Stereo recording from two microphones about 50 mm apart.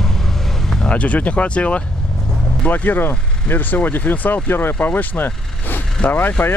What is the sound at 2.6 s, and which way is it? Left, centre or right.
Speech, left.